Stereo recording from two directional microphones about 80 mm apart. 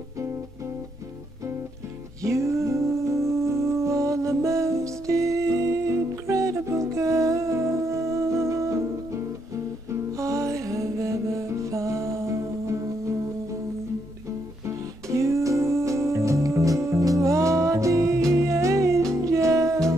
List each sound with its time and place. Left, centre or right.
2.2 s music: right
10.1 s music: right
14.7 s music: right